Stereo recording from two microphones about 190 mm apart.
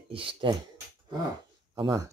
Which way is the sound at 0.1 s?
30° right (ahead or behind).